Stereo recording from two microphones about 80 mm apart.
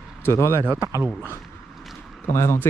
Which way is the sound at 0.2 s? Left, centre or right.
Left.